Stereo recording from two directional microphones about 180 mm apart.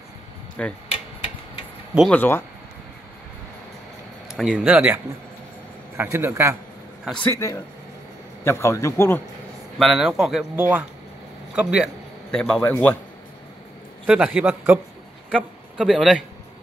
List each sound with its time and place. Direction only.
0.6 s speech: 5° left (ahead or behind)
2.0 s a man's voice: 5° left (ahead or behind)
4.3 s a man's voice: centre (ahead or behind)
7.1 s speech: 5° left (ahead or behind)
7.3 s a man's voice: 15° left (ahead or behind)
9.8 s a man's voice: centre (ahead or behind)
14.0 s a man's voice: 5° right (ahead or behind)